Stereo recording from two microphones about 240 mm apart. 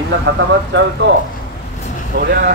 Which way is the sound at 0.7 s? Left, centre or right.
Right.